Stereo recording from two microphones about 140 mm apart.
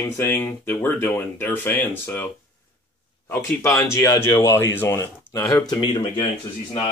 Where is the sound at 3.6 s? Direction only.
20° left (ahead or behind).